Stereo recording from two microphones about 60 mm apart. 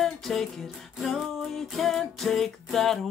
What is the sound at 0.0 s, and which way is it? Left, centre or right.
Music, centre.